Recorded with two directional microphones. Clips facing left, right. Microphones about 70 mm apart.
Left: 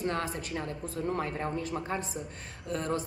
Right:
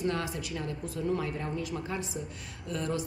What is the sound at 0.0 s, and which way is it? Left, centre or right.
A man's voice, left.